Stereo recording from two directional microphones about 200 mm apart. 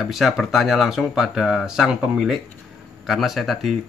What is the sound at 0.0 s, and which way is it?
Speech, centre (ahead or behind).